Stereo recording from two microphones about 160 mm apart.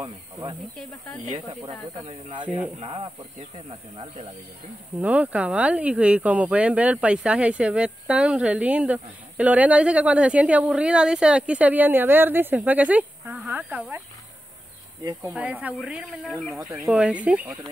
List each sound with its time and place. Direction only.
0.0 s speech: 30° right (ahead or behind)
2.0 s speech: 35° right (ahead or behind)
2.4 s speech: 10° right (ahead or behind)
2.8 s speech: 35° right (ahead or behind)
5.0 s speech: 10° right (ahead or behind)
15.3 s speech: 10° right (ahead or behind)